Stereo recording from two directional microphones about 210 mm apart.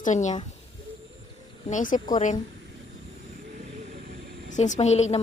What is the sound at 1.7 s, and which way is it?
Speech, 40° left (ahead or behind).